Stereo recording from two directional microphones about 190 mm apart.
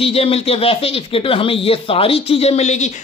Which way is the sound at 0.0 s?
30° left (ahead or behind).